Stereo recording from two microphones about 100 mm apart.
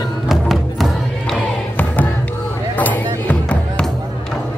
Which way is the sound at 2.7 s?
15° left (ahead or behind).